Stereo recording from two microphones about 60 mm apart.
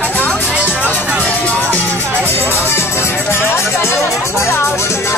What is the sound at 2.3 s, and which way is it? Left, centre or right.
Music, left.